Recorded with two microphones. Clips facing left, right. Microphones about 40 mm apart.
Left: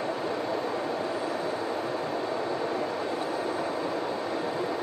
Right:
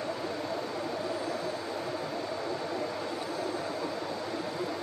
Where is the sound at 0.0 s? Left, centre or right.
Left.